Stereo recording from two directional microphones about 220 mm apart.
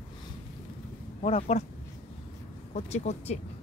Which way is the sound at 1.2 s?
25° left (ahead or behind).